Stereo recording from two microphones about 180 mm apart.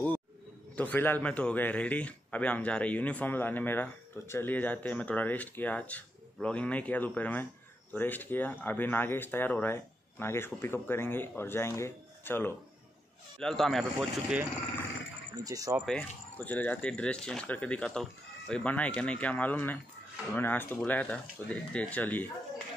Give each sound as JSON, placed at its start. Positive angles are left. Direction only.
{"t": 0.7, "sound": "a man's voice", "side_deg": 10}
{"t": 15.4, "sound": "speech", "side_deg": -20}
{"t": 15.8, "sound": "a man's voice", "side_deg": 5}